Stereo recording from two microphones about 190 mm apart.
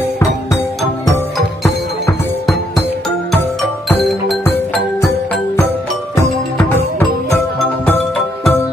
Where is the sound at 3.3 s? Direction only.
Centre (ahead or behind).